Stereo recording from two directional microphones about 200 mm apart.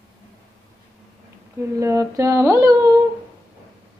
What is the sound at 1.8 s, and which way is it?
A woman's voice, 15° right (ahead or behind).